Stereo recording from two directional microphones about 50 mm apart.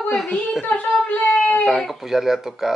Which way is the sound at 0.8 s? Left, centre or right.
Left.